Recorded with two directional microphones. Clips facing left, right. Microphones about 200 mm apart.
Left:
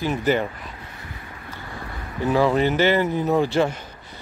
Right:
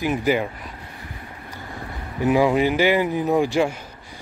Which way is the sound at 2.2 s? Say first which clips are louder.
Right 1 dB; 15° right (ahead or behind).